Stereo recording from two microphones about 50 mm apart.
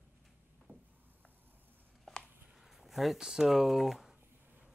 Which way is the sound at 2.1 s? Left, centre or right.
Centre.